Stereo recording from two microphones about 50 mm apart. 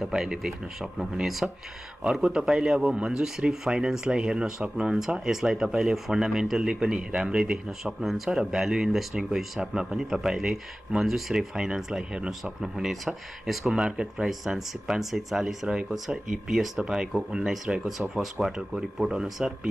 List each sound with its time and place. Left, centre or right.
0.0 s speech: centre
13.7 s speech: centre
14.4 s speech: centre